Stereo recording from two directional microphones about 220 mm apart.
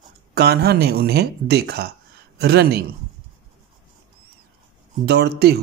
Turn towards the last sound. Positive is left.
turn(degrees=-45)  # may be behind; listen again after turning